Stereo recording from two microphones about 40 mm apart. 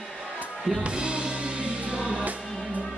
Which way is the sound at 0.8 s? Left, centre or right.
Right.